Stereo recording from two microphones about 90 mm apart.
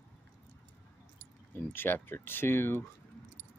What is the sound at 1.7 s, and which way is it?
Speech, 25° left (ahead or behind).